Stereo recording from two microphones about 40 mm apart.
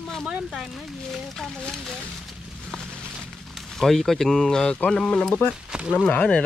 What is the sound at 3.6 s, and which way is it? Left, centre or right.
Speech, centre.